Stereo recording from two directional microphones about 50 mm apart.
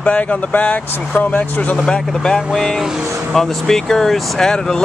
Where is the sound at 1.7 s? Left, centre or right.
Centre.